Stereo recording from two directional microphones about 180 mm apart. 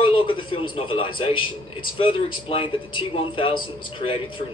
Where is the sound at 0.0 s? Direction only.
30° left (ahead or behind).